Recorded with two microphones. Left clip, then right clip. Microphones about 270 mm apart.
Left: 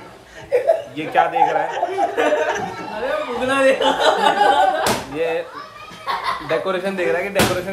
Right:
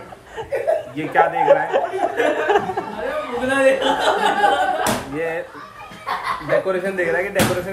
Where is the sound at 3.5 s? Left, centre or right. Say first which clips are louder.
Even; left.